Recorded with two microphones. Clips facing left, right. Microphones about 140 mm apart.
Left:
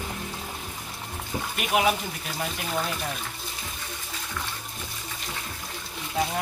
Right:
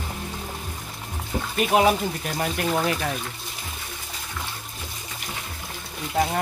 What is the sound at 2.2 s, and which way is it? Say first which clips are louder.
Speech: right 5 dB; 55° right (ahead or behind).